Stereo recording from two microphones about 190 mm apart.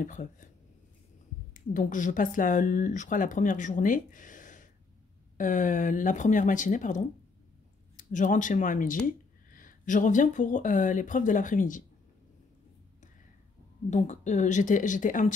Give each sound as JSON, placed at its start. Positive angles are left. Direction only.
{"t": 0.0, "sound": "speech", "side_deg": 40}
{"t": 1.5, "sound": "speech", "side_deg": 45}
{"t": 13.8, "sound": "speech", "side_deg": 40}